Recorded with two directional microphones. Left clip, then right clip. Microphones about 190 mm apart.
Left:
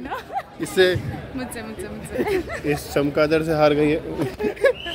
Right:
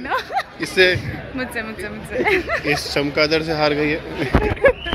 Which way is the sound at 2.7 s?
55° left (ahead or behind).